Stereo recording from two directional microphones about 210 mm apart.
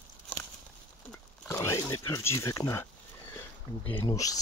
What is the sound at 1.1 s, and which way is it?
Speech, 10° left (ahead or behind).